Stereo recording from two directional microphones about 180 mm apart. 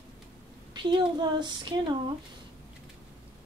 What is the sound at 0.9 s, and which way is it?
A woman's voice, 25° right (ahead or behind).